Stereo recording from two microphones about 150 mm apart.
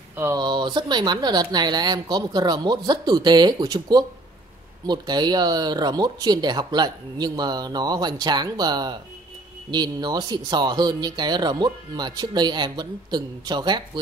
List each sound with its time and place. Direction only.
0.1 s speech: 15° right (ahead or behind)
0.4 s speech: 30° right (ahead or behind)